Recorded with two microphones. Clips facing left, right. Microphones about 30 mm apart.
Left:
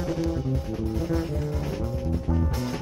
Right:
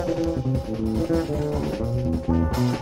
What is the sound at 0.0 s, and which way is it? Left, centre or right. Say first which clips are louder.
Music: right 3 dB; centre.